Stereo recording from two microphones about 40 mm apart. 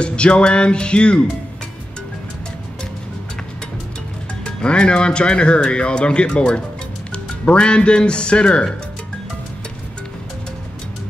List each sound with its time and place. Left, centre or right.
0.0 s speech: left
4.5 s speech: left